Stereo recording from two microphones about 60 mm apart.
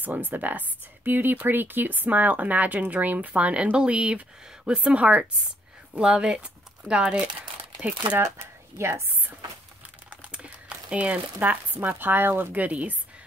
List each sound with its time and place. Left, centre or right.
0.0 s speech: right
8.2 s speech: right
10.3 s crumpling: centre
11.1 s speech: right
12.5 s speech: right